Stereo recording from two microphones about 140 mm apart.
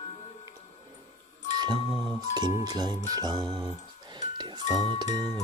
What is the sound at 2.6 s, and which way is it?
Speech, 30° right (ahead or behind).